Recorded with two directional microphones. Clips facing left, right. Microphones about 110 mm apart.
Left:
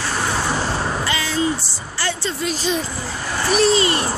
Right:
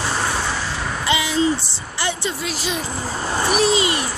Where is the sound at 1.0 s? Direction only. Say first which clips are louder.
Right 7 dB; 15° right (ahead or behind).